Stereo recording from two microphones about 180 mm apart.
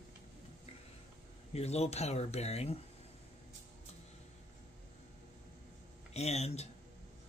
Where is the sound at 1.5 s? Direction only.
35° left (ahead or behind).